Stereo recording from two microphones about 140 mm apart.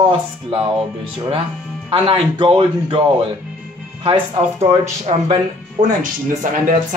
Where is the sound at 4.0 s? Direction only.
45° right (ahead or behind).